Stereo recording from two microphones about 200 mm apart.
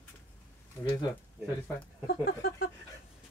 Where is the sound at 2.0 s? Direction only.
45° left (ahead or behind).